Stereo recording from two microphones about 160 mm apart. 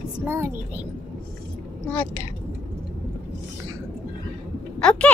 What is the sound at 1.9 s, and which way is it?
Speech, 10° left (ahead or behind).